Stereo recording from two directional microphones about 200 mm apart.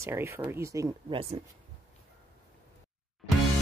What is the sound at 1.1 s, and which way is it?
Speech, 30° right (ahead or behind).